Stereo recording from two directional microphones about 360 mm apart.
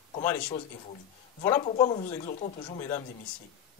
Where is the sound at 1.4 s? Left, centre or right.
Centre.